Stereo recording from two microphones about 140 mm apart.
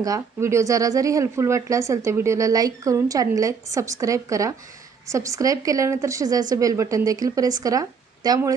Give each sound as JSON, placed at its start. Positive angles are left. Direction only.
{"t": 0.0, "sound": "speech", "side_deg": -20}